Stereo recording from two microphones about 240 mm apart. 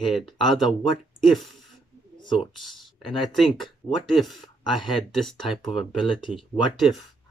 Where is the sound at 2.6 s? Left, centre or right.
Centre.